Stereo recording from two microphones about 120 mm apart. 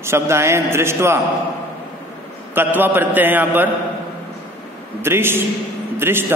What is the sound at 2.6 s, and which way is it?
A man's voice, 15° right (ahead or behind).